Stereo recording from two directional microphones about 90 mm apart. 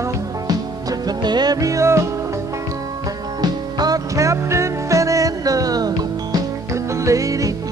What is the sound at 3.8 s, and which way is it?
Music, 40° right (ahead or behind).